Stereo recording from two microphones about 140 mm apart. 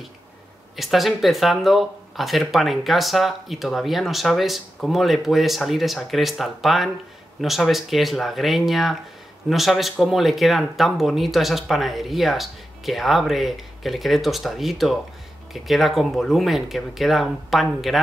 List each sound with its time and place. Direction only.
0.7 s speech: centre (ahead or behind)